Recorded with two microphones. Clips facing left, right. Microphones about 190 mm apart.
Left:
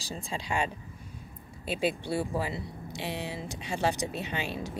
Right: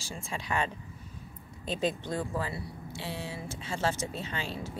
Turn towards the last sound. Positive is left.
turn(degrees=15)  # may be behind; listen again after turning